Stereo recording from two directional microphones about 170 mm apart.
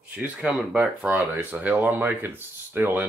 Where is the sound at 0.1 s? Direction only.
5° right (ahead or behind).